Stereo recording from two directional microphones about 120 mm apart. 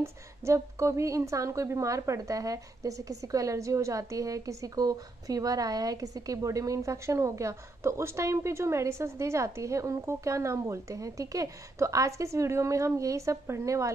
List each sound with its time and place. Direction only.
0.0 s a woman's voice: 25° right (ahead or behind)